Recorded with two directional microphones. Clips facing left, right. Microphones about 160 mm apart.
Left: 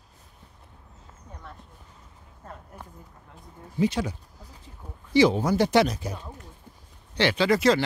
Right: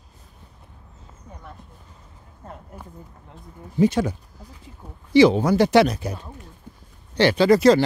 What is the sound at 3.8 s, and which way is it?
Speech, 50° right (ahead or behind).